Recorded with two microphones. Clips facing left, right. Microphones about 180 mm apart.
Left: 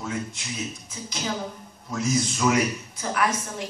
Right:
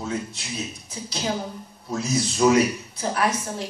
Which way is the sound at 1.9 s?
35° right (ahead or behind).